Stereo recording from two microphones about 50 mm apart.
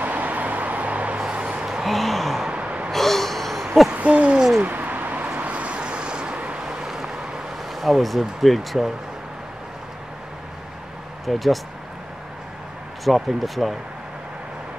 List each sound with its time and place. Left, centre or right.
0.0 s vehicle: right
1.7 s a sound: centre
2.5 s gasp: right
2.9 s gasp: centre
3.9 s hoot: right
4.6 s a sound: right
5.4 s vehicle: right
6.6 s vehicle: centre
7.7 s speech: centre
11.2 s speech: centre
13.0 s speech: centre